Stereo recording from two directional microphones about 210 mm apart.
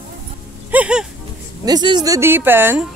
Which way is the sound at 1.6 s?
20° right (ahead or behind).